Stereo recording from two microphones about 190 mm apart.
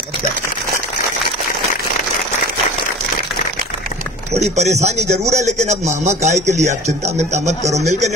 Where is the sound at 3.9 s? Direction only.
40° left (ahead or behind).